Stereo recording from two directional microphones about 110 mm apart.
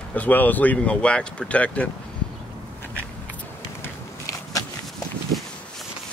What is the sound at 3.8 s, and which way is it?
Walk, 30° left (ahead or behind).